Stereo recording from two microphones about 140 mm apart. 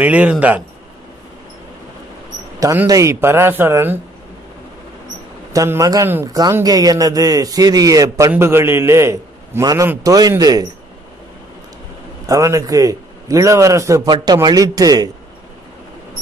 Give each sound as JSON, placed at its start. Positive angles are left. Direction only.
{"t": 0.0, "sound": "speech", "side_deg": -10}
{"t": 2.6, "sound": "speech", "side_deg": -20}
{"t": 5.5, "sound": "a man's voice", "side_deg": -25}
{"t": 12.3, "sound": "a man's voice", "side_deg": -20}